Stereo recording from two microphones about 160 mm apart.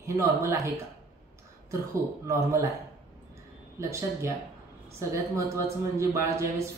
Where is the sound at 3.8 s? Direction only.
20° right (ahead or behind).